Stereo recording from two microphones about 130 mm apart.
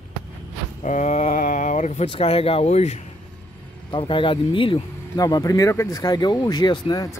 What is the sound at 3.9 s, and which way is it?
Speech, 40° left (ahead or behind).